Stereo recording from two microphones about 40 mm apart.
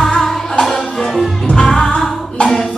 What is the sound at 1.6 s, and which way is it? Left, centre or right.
Music, centre.